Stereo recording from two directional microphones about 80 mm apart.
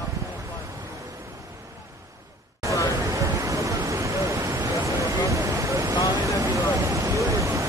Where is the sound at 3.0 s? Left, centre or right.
Right.